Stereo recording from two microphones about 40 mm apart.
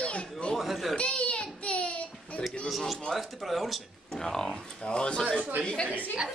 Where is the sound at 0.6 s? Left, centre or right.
Centre.